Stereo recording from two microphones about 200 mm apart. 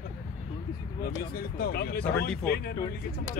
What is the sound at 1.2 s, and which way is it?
Speech, 50° left (ahead or behind).